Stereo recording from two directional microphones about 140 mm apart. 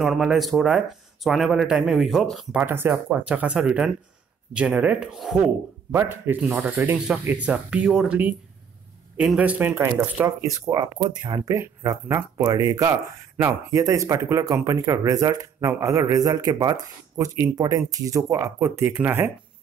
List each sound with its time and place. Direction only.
0.0 s speech: centre (ahead or behind)
2.6 s speech: 15° right (ahead or behind)
5.9 s speech: 15° right (ahead or behind)